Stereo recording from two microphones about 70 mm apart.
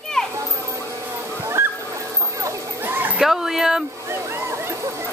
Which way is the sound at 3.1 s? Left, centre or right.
Centre.